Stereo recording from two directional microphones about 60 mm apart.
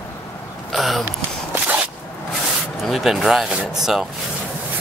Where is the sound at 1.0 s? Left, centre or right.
Right.